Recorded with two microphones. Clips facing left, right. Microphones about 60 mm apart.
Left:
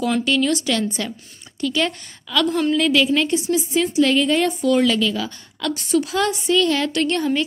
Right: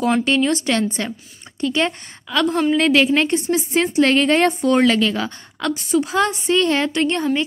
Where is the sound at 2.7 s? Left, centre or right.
Right.